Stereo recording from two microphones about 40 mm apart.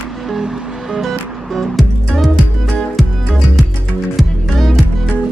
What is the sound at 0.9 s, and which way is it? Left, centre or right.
Music, centre.